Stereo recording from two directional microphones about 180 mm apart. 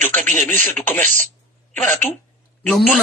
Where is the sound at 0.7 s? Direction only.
10° left (ahead or behind).